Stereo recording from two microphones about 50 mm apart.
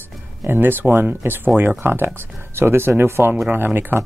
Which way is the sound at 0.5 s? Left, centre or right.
Right.